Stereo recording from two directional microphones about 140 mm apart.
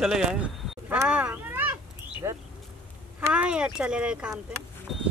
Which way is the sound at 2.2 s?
20° right (ahead or behind).